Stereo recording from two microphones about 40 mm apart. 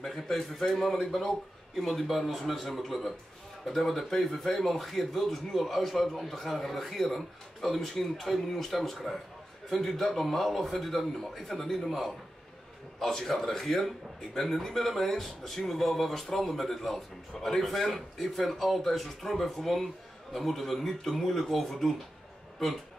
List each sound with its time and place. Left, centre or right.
0.0 s a man's voice: centre